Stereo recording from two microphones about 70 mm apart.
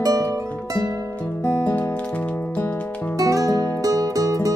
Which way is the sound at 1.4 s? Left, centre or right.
Left.